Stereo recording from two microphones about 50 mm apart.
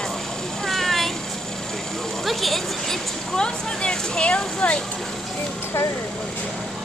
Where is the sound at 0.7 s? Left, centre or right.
Centre.